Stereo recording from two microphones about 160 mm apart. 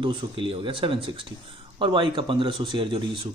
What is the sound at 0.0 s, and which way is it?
Speech, 30° right (ahead or behind).